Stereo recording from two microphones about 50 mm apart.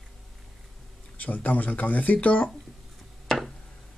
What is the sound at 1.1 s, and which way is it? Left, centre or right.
Speech, left.